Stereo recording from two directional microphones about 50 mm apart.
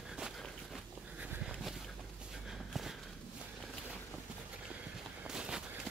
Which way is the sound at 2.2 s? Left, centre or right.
Centre.